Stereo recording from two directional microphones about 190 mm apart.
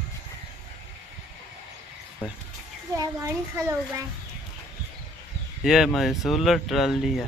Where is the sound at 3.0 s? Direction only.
15° right (ahead or behind).